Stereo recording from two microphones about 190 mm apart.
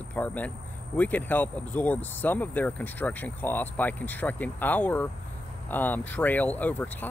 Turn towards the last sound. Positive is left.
turn(degrees=10)  # may be behind; listen again after turning